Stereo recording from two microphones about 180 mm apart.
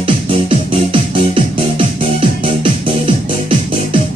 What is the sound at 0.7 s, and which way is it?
Music, 30° right (ahead or behind).